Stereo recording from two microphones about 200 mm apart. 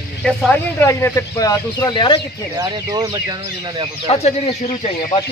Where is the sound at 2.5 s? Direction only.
20° right (ahead or behind).